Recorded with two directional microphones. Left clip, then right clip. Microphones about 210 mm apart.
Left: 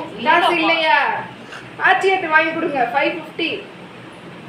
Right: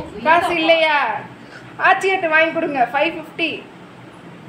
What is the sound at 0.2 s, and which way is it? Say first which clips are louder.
A woman's voice: left 1 dB; 35° right (ahead or behind).